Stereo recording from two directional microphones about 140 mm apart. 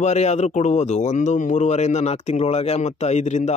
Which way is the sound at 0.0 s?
55° left (ahead or behind).